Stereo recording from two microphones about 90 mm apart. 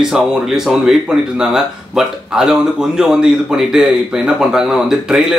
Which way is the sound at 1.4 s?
5° right (ahead or behind).